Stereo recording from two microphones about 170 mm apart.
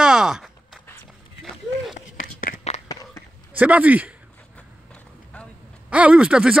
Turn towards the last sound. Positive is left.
turn(degrees=-5)  # may be behind; listen again after turning